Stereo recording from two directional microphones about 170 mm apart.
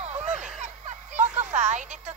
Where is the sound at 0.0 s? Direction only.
40° right (ahead or behind).